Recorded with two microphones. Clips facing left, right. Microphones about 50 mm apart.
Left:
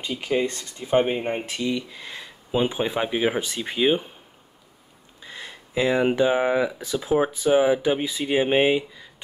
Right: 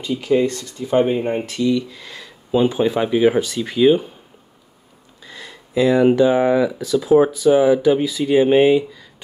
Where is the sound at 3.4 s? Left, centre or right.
Left.